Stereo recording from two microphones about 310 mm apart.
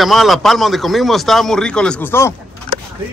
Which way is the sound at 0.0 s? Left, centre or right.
Centre.